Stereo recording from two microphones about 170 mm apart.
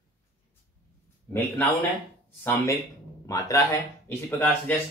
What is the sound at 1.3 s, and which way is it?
Speech, 10° left (ahead or behind).